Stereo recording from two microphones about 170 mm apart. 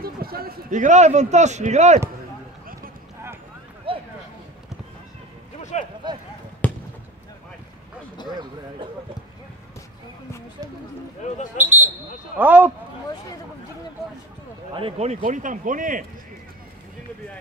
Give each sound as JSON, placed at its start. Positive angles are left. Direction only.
{"t": 0.0, "sound": "a man's voice", "side_deg": -60}
{"t": 3.9, "sound": "a sound", "side_deg": -30}
{"t": 5.6, "sound": "a sound", "side_deg": 45}
{"t": 6.6, "sound": "basketball bounce", "side_deg": 10}
{"t": 8.3, "sound": "speech", "side_deg": -25}
{"t": 11.5, "sound": "speech", "side_deg": -10}
{"t": 14.7, "sound": "speech", "side_deg": -30}